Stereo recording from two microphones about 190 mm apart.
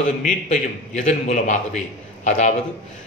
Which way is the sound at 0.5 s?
35° left (ahead or behind).